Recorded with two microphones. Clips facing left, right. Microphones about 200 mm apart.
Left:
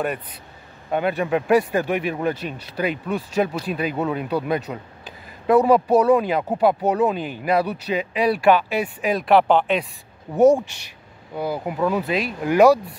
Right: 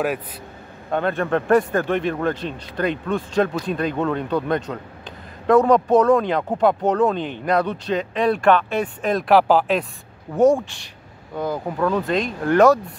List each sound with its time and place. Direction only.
0.9 s speech: 10° left (ahead or behind)
10.3 s speech: 20° left (ahead or behind)